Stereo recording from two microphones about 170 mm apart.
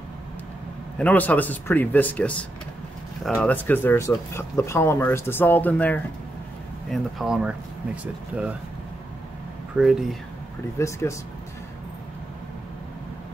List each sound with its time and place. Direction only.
0.9 s speech: 10° left (ahead or behind)
6.9 s speech: centre (ahead or behind)
9.8 s speech: 5° right (ahead or behind)
10.8 s speech: 15° left (ahead or behind)